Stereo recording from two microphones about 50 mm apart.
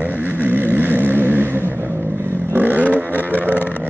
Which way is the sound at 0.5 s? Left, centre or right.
Right.